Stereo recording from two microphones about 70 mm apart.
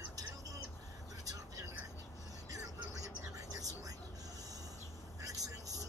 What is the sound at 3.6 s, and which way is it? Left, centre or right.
Vehicle, right.